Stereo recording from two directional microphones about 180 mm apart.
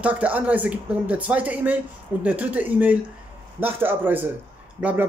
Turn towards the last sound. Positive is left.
turn(degrees=-5)  # may be behind; listen again after turning